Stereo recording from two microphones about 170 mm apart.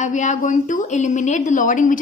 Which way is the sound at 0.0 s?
45° left (ahead or behind).